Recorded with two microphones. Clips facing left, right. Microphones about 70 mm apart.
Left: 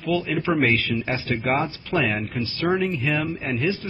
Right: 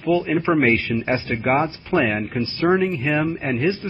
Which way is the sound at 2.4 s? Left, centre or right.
Right.